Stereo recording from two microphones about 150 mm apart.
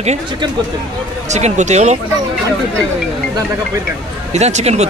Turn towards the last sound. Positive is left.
turn(degrees=-45)  # may be behind; listen again after turning